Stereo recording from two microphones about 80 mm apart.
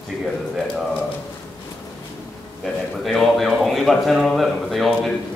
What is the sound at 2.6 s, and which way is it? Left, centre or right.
Speech, centre.